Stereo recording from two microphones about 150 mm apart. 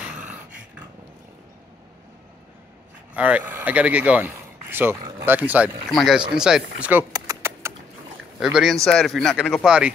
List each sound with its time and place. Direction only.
3.2 s speech: 10° right (ahead or behind)
5.9 s speech: centre (ahead or behind)
7.1 s a sound: 25° right (ahead or behind)
8.4 s speech: centre (ahead or behind)